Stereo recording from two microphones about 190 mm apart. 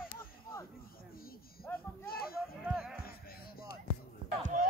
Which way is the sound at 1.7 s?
10° left (ahead or behind).